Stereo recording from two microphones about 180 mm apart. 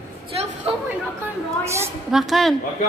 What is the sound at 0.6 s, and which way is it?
Speech, 30° right (ahead or behind).